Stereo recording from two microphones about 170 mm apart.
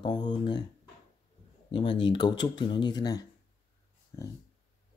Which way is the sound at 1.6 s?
30° left (ahead or behind).